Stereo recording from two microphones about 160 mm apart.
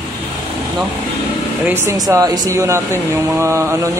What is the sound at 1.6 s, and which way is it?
Speech, 15° right (ahead or behind).